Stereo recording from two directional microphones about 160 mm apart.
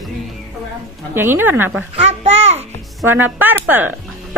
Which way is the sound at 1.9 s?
40° right (ahead or behind).